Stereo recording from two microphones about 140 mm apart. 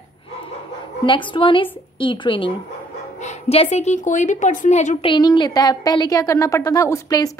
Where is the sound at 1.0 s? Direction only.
35° left (ahead or behind).